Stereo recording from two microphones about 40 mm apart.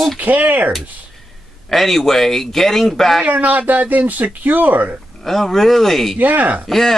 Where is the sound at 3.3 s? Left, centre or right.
Right.